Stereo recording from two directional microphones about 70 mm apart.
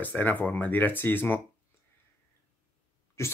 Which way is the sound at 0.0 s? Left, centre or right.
Left.